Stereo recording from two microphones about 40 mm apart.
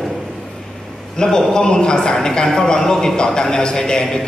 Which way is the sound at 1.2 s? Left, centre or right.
Centre.